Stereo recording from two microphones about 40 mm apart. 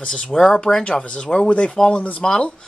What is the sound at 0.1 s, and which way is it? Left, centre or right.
Speech, centre.